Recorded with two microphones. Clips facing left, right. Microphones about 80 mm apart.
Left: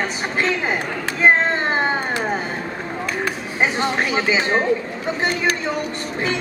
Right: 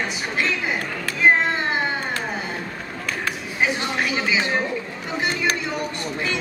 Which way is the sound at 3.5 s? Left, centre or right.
Left.